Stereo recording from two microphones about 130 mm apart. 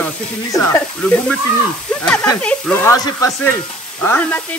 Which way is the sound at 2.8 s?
25° left (ahead or behind).